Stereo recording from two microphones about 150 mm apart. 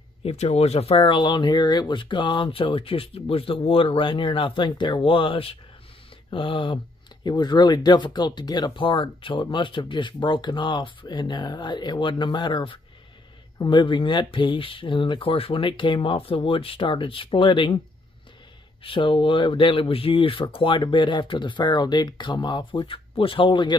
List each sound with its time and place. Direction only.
0.2 s speech: 40° left (ahead or behind)
18.8 s speech: 35° left (ahead or behind)